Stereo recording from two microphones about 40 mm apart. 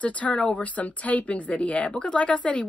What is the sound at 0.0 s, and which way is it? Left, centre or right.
Speech, left.